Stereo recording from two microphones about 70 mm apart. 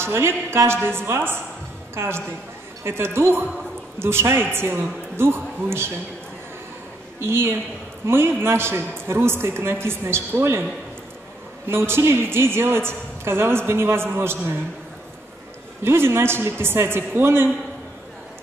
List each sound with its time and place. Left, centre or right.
0.0 s a woman's voice: right
7.2 s a woman's voice: right
11.6 s a woman's voice: right
15.8 s a woman's voice: right